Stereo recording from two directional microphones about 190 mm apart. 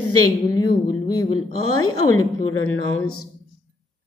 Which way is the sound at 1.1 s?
20° left (ahead or behind).